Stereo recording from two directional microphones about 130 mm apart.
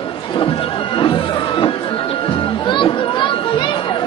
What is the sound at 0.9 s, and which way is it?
Music, 40° left (ahead or behind).